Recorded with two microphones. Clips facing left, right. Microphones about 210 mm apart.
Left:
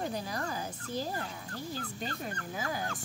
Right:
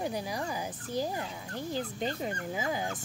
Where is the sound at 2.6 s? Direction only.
15° right (ahead or behind).